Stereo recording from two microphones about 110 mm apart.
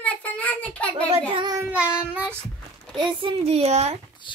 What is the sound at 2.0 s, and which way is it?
Child singing, 15° right (ahead or behind).